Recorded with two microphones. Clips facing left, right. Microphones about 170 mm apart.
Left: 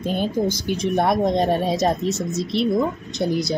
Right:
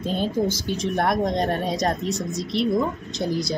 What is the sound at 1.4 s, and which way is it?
A woman's voice, 5° left (ahead or behind).